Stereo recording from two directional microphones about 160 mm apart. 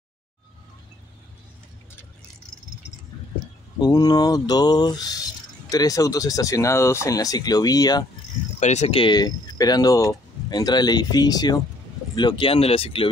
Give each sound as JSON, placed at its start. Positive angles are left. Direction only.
{"t": 3.8, "sound": "speech", "side_deg": 25}
{"t": 8.5, "sound": "speech", "side_deg": 45}